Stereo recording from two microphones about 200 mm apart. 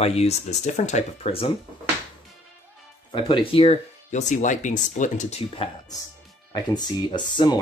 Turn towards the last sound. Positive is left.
turn(degrees=20)  # may be behind; listen again after turning